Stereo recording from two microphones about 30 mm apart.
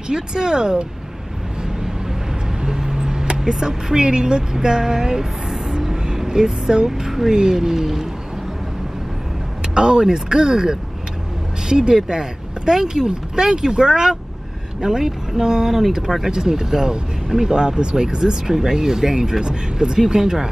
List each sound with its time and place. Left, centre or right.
0.1 s speech: right
2.6 s speech: centre
7.0 s speech: centre
9.8 s speech: right